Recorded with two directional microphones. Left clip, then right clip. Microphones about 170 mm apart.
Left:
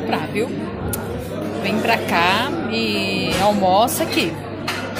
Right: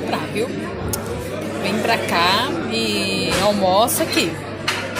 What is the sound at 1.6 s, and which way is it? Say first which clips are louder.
Speech: even; centre (ahead or behind).